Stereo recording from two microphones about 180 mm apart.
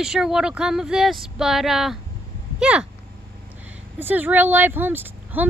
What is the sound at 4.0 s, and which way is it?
Speech, 10° right (ahead or behind).